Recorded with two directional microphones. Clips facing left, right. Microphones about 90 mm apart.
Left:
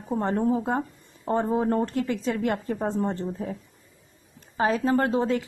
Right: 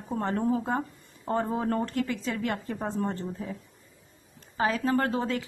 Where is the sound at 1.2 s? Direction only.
25° left (ahead or behind).